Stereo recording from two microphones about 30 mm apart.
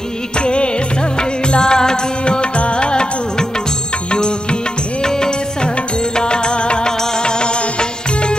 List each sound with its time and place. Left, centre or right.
0.4 s music: left
2.2 s music: left